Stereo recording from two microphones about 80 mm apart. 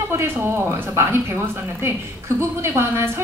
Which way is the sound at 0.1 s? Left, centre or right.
Right.